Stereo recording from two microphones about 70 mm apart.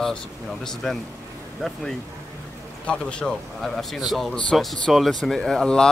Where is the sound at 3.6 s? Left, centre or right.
Centre.